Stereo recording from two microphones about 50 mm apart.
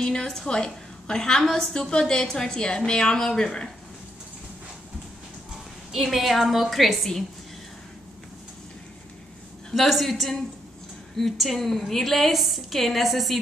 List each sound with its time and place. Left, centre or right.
0.0 s a woman's voice: centre
5.9 s a woman's voice: centre
9.7 s a woman's voice: centre